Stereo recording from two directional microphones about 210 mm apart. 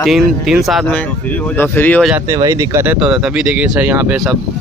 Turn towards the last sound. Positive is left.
turn(degrees=-10)  # may be behind; listen again after turning